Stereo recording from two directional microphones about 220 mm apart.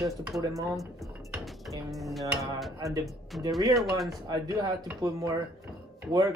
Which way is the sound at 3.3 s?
Centre (ahead or behind).